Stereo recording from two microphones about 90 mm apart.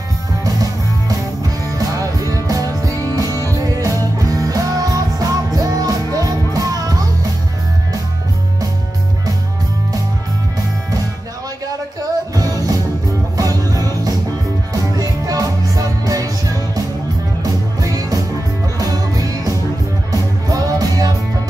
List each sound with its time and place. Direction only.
0.4 s music: 45° right (ahead or behind)
12.4 s music: 40° right (ahead or behind)